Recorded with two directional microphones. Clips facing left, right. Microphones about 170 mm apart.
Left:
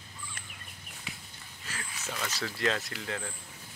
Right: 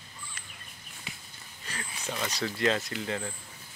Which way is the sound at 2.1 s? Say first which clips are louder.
Right 3 dB; 15° right (ahead or behind).